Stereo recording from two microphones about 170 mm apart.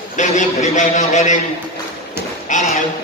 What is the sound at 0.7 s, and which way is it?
Speech, 40° left (ahead or behind).